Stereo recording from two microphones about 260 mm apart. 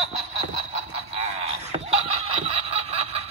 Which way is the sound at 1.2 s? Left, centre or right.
Right.